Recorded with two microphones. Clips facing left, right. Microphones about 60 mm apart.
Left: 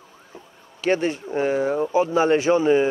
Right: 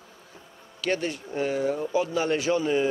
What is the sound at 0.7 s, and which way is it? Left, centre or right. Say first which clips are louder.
Speech: left 6 dB; left.